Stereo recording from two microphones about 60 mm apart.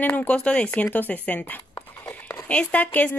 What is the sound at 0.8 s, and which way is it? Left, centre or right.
Speech, left.